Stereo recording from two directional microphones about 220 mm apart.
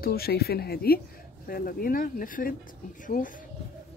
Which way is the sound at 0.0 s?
45° left (ahead or behind).